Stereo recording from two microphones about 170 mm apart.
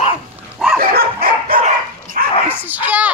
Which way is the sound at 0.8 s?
60° right (ahead or behind).